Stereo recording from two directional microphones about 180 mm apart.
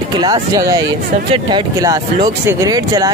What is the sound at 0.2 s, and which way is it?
Speech, 20° right (ahead or behind).